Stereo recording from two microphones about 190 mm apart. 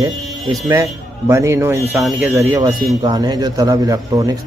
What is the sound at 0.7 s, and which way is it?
A man's voice, 15° right (ahead or behind).